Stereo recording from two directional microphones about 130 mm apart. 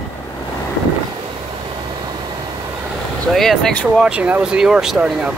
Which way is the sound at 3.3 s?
5° left (ahead or behind).